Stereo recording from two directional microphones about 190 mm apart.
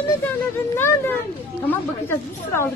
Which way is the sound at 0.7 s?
10° left (ahead or behind).